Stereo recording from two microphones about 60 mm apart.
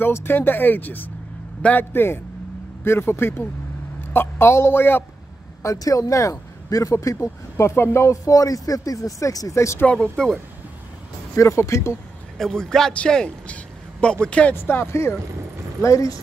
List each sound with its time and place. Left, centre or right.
0.0 s a man's voice: left
1.9 s speech: left
5.6 s speech: left
8.3 s speech: left
9.8 s a man's voice: centre
11.3 s speech: left
12.4 s a man's voice: centre
14.5 s speech: left
15.8 s speech: left